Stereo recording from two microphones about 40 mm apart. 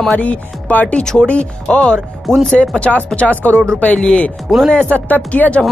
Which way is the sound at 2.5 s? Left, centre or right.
Left.